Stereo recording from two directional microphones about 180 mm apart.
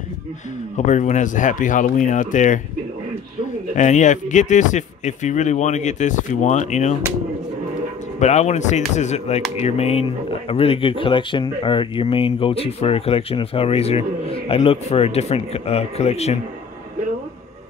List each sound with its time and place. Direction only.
0.7 s speech: 40° left (ahead or behind)
3.7 s speech: 40° left (ahead or behind)
8.2 s speech: 40° left (ahead or behind)